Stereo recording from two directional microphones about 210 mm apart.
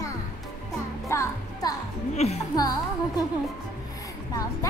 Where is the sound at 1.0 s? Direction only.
15° left (ahead or behind).